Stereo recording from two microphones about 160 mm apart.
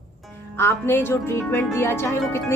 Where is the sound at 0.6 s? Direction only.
15° left (ahead or behind).